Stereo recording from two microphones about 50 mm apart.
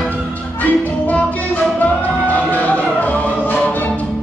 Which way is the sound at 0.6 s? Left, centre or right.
Left.